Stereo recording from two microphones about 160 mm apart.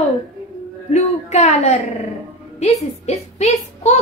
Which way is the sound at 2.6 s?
45° left (ahead or behind).